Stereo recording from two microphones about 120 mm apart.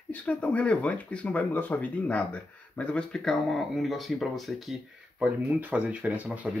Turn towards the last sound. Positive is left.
turn(degrees=-15)  # may be behind; listen again after turning